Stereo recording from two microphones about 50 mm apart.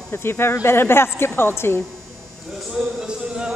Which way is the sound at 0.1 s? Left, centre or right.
Left.